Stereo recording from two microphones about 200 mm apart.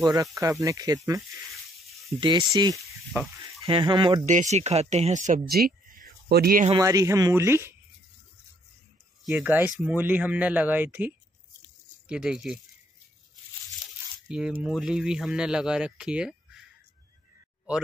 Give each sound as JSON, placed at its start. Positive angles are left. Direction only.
{"t": 0.0, "sound": "speech", "side_deg": -20}
{"t": 2.7, "sound": "sizzle", "side_deg": 0}
{"t": 3.6, "sound": "speech", "side_deg": -25}
{"t": 4.3, "sound": "speech", "side_deg": -35}
{"t": 6.8, "sound": "speech", "side_deg": -15}
{"t": 9.2, "sound": "speech", "side_deg": -10}
{"t": 14.2, "sound": "speech", "side_deg": -5}